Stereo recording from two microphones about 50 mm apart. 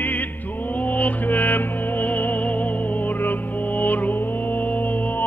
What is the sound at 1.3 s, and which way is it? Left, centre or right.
Music, left.